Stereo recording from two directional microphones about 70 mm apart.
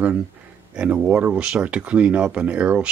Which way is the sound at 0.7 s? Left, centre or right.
Right.